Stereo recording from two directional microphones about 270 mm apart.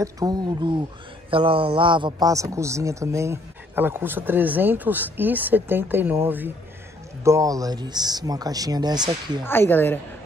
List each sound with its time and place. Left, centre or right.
0.0 s speech: centre
9.4 s speech: centre